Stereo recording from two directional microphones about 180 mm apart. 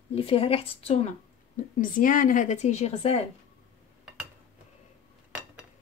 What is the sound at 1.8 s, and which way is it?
A woman's voice, 50° left (ahead or behind).